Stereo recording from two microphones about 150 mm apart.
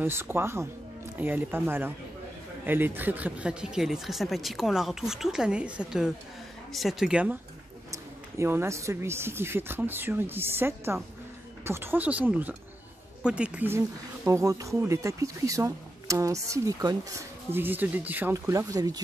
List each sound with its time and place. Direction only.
0.0 s speech: 15° right (ahead or behind)
7.9 s speech: 15° right (ahead or behind)